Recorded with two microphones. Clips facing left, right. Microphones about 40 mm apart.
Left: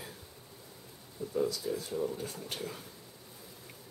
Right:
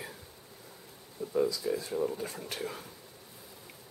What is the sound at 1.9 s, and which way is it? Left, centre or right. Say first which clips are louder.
Speech: right 1 dB; centre.